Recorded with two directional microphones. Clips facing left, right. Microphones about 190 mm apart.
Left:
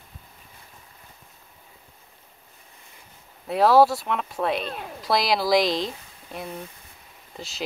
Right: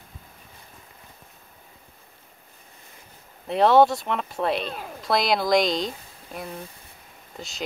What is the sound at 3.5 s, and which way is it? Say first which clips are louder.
Speech: even; centre (ahead or behind).